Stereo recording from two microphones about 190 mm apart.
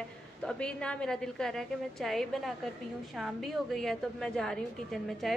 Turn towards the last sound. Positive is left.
turn(degrees=0)  # may be behind; listen again after turning